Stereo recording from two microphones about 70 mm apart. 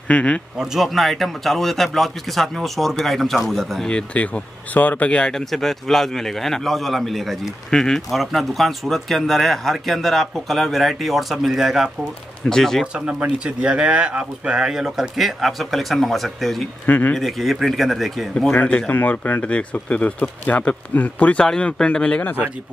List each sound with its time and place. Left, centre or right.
0.1 s a man's voice: centre
0.6 s speech: centre
3.9 s speech: centre
5.3 s speech: centre
12.8 s speech: centre
16.8 s speech: left
17.1 s speech: centre
18.5 s a man's voice: left
22.2 s speech: left